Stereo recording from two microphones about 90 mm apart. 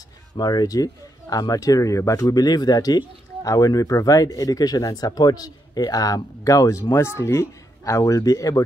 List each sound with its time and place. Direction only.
0.4 s speech: 50° left (ahead or behind)